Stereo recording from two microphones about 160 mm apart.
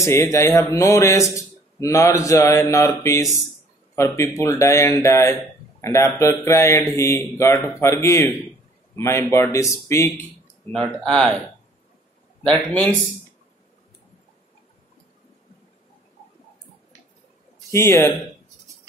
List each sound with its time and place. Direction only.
0.0 s speech: 20° left (ahead or behind)
10.7 s speech: 5° left (ahead or behind)
12.7 s speech: 10° left (ahead or behind)
17.6 s a man's voice: 15° left (ahead or behind)